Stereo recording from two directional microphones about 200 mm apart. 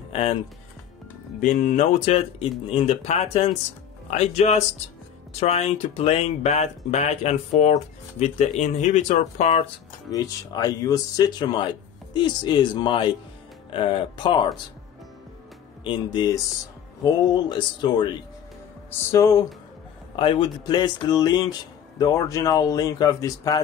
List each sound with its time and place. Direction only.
0.1 s speech: 30° left (ahead or behind)
1.4 s speech: 35° left (ahead or behind)
10.1 s speech: 20° left (ahead or behind)
15.8 s speech: 25° left (ahead or behind)